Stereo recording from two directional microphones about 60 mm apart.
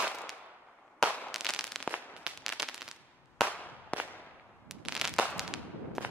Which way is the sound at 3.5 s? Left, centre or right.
Left.